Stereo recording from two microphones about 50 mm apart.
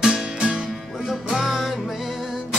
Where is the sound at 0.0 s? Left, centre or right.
Centre.